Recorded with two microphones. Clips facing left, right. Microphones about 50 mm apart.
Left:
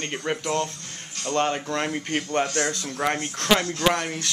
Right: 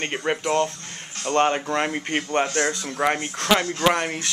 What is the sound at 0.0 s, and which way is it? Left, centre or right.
Speech, right.